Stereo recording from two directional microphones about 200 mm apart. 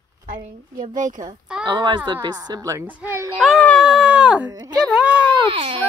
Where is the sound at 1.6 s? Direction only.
20° right (ahead or behind).